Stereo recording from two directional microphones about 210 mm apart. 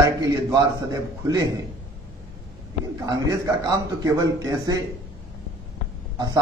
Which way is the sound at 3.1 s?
15° right (ahead or behind).